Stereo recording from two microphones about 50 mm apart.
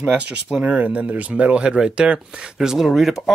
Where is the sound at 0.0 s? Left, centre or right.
Right.